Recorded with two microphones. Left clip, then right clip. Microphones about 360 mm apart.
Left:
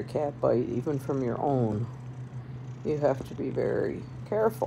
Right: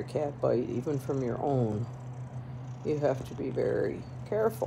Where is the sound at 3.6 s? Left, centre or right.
Centre.